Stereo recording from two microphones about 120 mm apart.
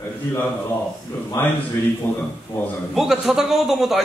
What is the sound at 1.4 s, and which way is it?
Speech, 25° left (ahead or behind).